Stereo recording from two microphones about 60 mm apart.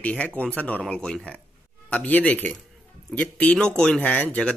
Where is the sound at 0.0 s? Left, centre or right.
Left.